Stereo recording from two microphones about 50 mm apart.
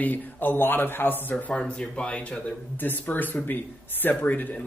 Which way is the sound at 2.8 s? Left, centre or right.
Left.